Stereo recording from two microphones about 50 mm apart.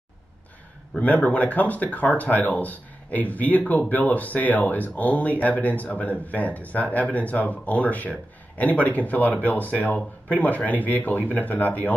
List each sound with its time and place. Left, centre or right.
1.0 s speech: left